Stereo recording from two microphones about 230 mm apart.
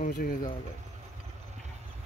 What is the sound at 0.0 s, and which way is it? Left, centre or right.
Speech, left.